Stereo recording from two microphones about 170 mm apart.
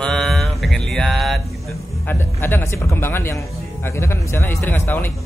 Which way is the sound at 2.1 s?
10° left (ahead or behind).